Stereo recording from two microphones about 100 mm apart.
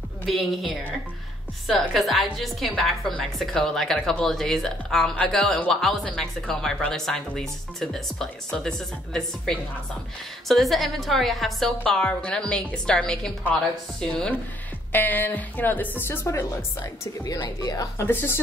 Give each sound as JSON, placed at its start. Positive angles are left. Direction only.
{"t": 0.3, "sound": "speech", "side_deg": 0}
{"t": 1.7, "sound": "a woman's voice", "side_deg": 0}
{"t": 16.8, "sound": "speech", "side_deg": 40}
{"t": 18.0, "sound": "speech", "side_deg": 20}